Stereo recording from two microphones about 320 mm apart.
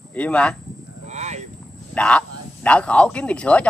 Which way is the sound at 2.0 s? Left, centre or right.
Centre.